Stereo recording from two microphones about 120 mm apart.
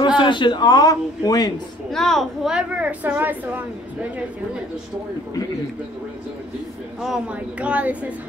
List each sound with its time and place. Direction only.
0.2 s a man's voice: 40° left (ahead or behind)
1.9 s a woman's voice: 5° left (ahead or behind); by 3.6 s 15° right (ahead or behind)
7.0 s a woman's voice: 5° right (ahead or behind)